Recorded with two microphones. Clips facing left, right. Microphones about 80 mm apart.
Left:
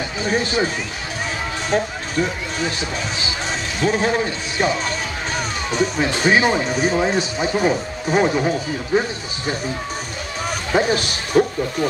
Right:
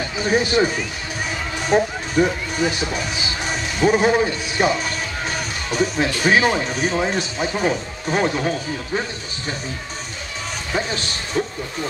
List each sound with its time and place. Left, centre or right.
0.2 s a man's voice: centre
3.8 s a man's voice: centre
10.7 s a man's voice: left